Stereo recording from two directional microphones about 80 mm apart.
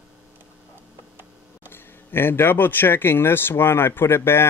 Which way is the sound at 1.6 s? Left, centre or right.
Left.